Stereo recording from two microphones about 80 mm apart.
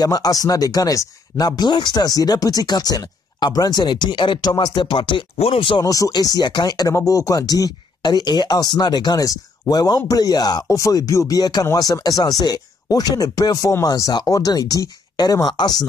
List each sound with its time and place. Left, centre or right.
0.0 s speech: left
5.9 s speech: left
7.0 s speech: left
10.7 s speech: left